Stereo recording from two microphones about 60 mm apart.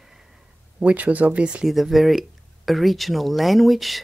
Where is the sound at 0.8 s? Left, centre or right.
Right.